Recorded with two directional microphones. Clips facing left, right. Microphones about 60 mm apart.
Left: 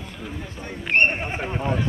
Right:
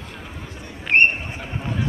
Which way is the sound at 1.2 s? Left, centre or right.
Left.